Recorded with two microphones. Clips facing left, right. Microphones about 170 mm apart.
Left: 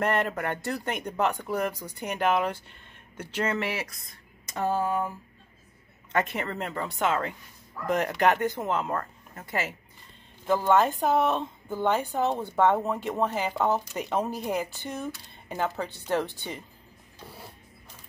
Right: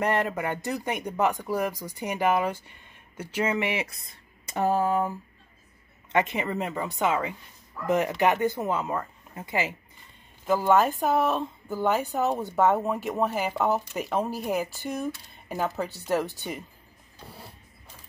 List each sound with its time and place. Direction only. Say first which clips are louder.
0.0 s speech: right 1 dB; 10° right (ahead or behind)
3.9 s speech: even; 30° right (ahead or behind)
6.1 s speech: right 3 dB; 15° right (ahead or behind)